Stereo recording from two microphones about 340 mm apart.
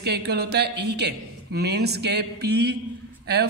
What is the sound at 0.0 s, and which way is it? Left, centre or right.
Speech, right.